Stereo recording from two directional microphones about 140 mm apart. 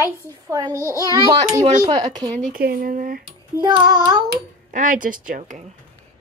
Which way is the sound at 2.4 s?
85° right.